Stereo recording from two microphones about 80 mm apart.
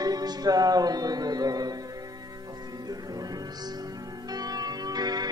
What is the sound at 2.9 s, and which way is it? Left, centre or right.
Music, right.